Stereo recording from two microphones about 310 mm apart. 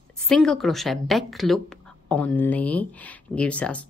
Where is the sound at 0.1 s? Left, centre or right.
Centre.